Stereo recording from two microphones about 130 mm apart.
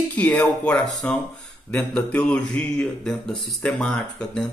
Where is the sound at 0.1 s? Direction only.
10° left (ahead or behind).